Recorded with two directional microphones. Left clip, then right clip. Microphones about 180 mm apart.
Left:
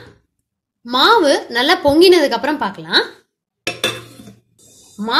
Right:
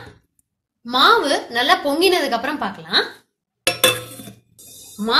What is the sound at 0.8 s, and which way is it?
A woman's voice, 55° left (ahead or behind).